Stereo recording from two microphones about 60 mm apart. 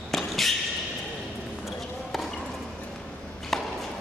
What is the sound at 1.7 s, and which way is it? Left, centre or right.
Basketball bounce, centre.